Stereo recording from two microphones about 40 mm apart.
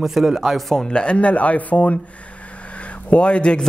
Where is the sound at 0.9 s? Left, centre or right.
Left.